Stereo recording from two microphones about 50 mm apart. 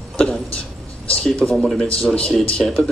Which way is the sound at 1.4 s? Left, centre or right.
Centre.